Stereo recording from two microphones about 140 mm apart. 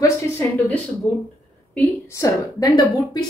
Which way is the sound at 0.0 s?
15° left (ahead or behind).